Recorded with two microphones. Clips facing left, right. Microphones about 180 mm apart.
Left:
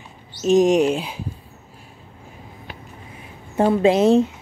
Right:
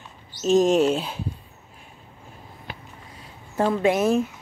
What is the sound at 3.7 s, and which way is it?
Speech, 25° left (ahead or behind).